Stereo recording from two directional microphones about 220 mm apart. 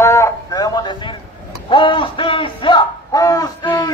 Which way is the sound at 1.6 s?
20° left (ahead or behind).